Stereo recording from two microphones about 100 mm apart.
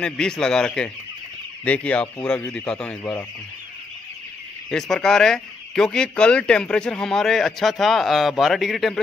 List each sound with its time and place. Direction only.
0.0 s speech: 5° left (ahead or behind)
4.6 s speech: 5° left (ahead or behind)